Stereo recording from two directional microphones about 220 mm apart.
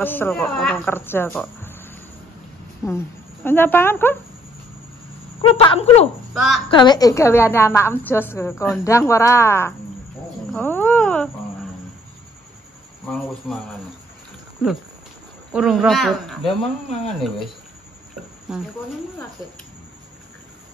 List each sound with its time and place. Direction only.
0.0 s speech: 10° left (ahead or behind)
5.5 s speech: 25° left (ahead or behind)
6.3 s speech: centre (ahead or behind)
6.7 s a woman's voice: 20° left (ahead or behind)
10.5 s a sound: 10° left (ahead or behind)
13.1 s speech: centre (ahead or behind)
15.5 s speech: 5° right (ahead or behind)
18.5 s speech: 5° right (ahead or behind)